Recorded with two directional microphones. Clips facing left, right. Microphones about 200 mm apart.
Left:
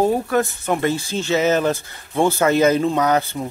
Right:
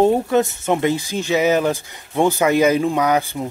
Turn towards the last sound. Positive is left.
turn(degrees=-10)  # may be behind; listen again after turning